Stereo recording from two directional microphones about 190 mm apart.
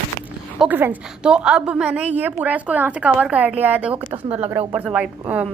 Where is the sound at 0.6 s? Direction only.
10° right (ahead or behind).